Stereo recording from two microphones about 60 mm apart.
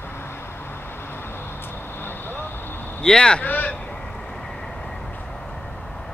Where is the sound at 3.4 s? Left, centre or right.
Left.